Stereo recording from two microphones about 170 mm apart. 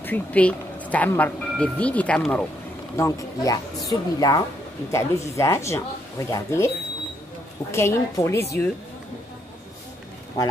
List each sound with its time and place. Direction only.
0.0 s speech: 10° left (ahead or behind)
3.0 s speech: 20° left (ahead or behind)
7.7 s speech: 15° left (ahead or behind)